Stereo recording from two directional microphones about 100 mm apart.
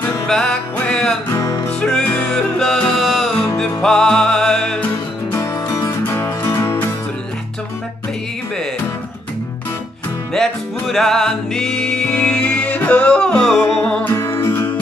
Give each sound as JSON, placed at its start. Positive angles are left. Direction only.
{"t": 0.3, "sound": "music", "side_deg": 10}
{"t": 1.3, "sound": "music", "side_deg": 35}
{"t": 1.7, "sound": "music", "side_deg": 10}
{"t": 5.3, "sound": "music", "side_deg": 30}
{"t": 10.3, "sound": "music", "side_deg": 5}
{"t": 14.1, "sound": "music", "side_deg": 25}